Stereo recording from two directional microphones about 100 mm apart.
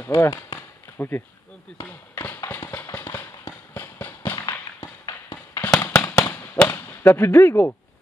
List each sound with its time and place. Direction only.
0.0 s speech: 25° left (ahead or behind)
0.6 s a sound: 20° left (ahead or behind)
2.1 s clip-clop: 20° left (ahead or behind)
4.5 s a sound: 40° left (ahead or behind)
5.8 s fireworks: 20° left (ahead or behind)
6.2 s whip: 25° left (ahead or behind)